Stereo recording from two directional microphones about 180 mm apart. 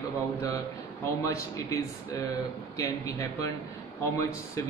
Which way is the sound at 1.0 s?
15° left (ahead or behind).